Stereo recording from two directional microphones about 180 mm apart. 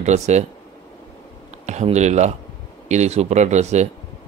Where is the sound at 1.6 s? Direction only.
40° right (ahead or behind).